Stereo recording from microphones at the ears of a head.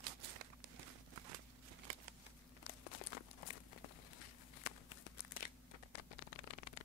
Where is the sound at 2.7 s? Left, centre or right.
Left.